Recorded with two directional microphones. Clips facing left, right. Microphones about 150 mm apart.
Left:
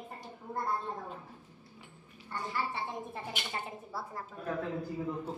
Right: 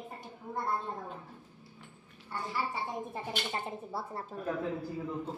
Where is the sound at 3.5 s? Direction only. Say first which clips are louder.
Right 3 dB; 30° right (ahead or behind).